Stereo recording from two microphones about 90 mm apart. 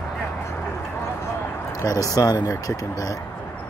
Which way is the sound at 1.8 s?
40° left (ahead or behind).